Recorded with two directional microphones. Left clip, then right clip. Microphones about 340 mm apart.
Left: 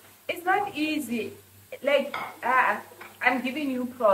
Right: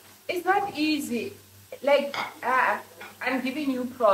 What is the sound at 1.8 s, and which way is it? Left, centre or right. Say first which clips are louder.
A child's voice: right 2 dB; centre.